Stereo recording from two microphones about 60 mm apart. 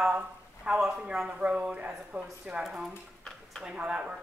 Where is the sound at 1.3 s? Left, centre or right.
Centre.